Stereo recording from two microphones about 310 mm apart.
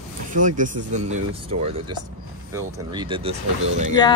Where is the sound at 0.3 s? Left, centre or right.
Right.